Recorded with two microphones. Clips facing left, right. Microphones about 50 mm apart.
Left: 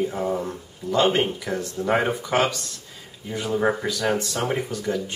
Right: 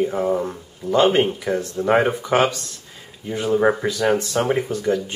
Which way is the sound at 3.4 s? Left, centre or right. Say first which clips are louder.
Right 5 dB; centre.